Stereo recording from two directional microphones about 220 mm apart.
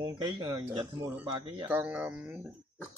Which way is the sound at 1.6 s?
5° right (ahead or behind).